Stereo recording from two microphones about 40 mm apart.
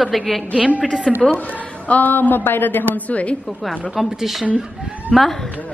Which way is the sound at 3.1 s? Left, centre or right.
Left.